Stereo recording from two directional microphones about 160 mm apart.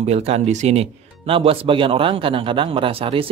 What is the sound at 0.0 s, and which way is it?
Speech, 40° right (ahead or behind).